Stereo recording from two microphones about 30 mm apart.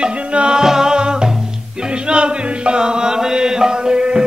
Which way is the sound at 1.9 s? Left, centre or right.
Right.